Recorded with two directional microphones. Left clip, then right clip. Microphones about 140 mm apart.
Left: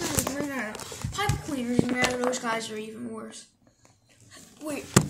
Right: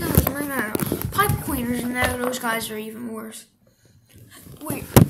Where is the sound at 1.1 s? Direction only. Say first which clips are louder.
Right 7 dB; 25° right (ahead or behind).